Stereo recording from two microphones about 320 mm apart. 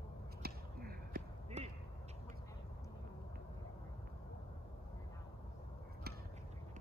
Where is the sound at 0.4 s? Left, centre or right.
Right.